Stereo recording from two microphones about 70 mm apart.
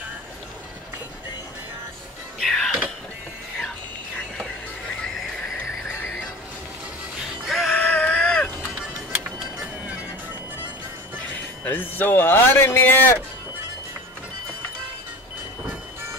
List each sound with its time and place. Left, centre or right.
2.4 s music: centre
7.4 s music: centre
7.7 s a sound: centre
11.6 s speech: left